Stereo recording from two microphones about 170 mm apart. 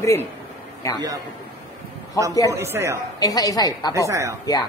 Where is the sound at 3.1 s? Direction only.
20° left (ahead or behind).